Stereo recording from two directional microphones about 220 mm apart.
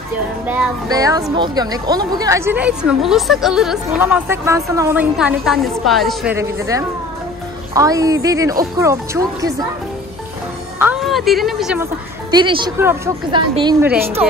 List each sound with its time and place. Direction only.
0.5 s a woman's voice: 15° right (ahead or behind)
5.1 s a woman's voice: centre (ahead or behind)
6.3 s a woman's voice: 15° right (ahead or behind)
10.8 s speech: 5° right (ahead or behind)
12.3 s a woman's voice: 20° right (ahead or behind)